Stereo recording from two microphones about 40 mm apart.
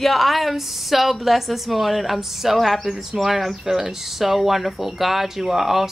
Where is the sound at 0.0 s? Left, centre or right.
Centre.